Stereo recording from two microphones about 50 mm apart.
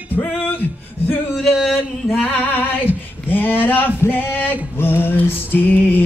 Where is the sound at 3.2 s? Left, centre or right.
Left.